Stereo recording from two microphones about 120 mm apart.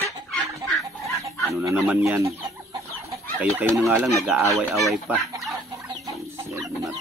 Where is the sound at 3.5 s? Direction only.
20° right (ahead or behind).